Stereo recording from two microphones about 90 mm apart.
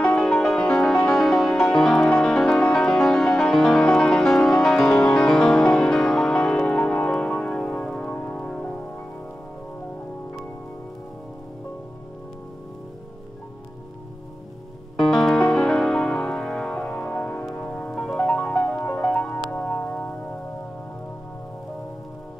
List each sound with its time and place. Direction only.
0.2 s music: 5° left (ahead or behind)
15.0 s music: centre (ahead or behind); by 20.3 s 20° left (ahead or behind)